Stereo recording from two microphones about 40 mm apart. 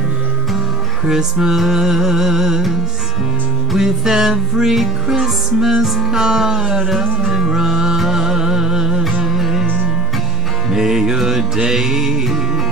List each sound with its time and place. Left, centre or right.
1.0 s music: centre
3.7 s music: centre
10.7 s music: centre